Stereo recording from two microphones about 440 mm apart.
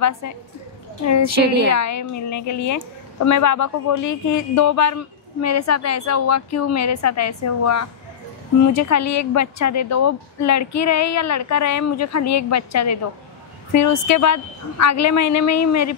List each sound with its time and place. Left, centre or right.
1.0 s speech: left
1.3 s a woman's voice: right
1.7 s speech: left